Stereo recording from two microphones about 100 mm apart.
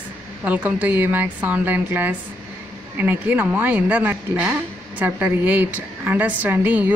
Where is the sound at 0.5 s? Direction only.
15° right (ahead or behind).